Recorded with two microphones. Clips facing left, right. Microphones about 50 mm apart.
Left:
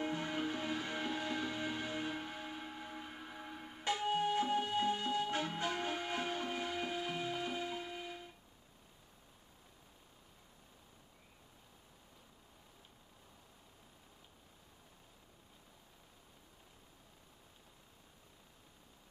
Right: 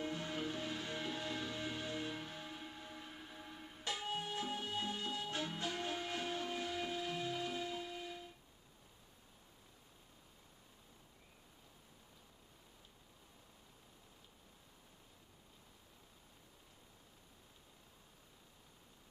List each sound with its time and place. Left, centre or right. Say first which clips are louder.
0.0 s music: left 4 dB; left